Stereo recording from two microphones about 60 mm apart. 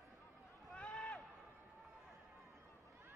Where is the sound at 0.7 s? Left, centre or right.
Centre.